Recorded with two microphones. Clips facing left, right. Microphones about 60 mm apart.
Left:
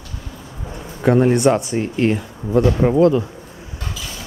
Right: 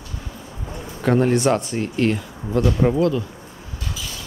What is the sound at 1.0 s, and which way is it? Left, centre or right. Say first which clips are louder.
Speech: left 3 dB; centre.